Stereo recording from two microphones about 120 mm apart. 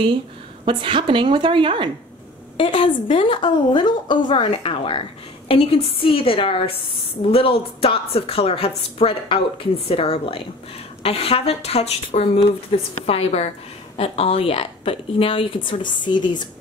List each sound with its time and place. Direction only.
0.7 s a woman's voice: 45° right (ahead or behind)
2.5 s speech: 50° left (ahead or behind)